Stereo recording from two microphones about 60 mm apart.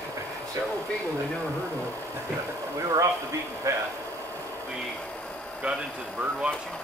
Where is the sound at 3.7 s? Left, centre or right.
Right.